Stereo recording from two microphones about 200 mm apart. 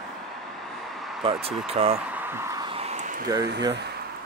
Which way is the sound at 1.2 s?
30° right (ahead or behind).